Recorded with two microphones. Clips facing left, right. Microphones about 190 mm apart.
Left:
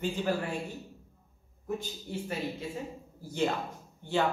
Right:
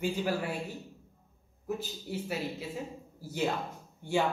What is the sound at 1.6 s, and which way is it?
A man's voice, 5° right (ahead or behind).